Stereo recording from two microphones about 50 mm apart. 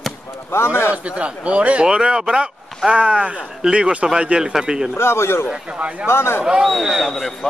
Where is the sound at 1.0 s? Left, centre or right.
Right.